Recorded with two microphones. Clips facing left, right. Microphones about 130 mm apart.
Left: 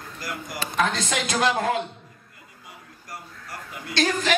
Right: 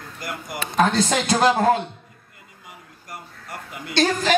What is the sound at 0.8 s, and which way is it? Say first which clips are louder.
A woman's voice: right 6 dB; 35° right (ahead or behind).